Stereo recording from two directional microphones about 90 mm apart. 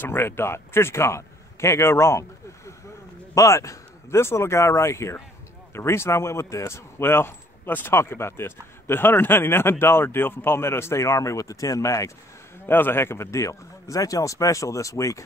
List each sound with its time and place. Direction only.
0.0 s a man's voice: 25° left (ahead or behind)
12.6 s speech: 25° left (ahead or behind)